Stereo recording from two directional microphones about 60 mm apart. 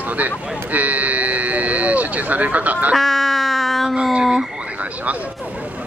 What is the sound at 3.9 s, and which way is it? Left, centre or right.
Speech, centre.